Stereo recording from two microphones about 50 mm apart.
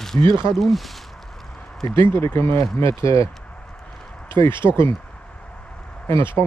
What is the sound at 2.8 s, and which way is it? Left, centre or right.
Speech, left.